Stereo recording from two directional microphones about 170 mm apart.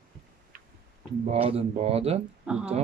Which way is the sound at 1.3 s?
35° right (ahead or behind).